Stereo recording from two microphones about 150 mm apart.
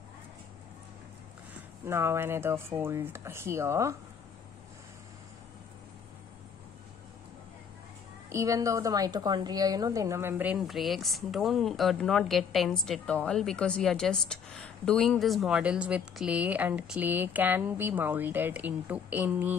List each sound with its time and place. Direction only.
1.5 s a woman's voice: 15° right (ahead or behind)
8.3 s a woman's voice: 20° right (ahead or behind)